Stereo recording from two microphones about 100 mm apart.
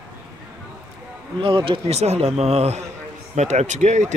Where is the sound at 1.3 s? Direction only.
55° right (ahead or behind).